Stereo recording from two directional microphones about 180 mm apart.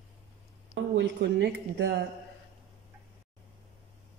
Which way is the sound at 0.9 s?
75° right (ahead or behind).